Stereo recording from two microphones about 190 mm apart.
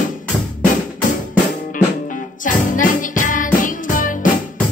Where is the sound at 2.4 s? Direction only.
45° left (ahead or behind).